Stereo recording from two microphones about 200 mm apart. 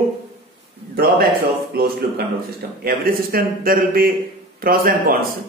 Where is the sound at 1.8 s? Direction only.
50° right (ahead or behind).